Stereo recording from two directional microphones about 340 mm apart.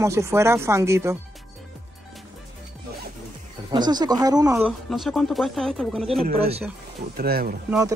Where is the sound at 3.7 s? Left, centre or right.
Centre.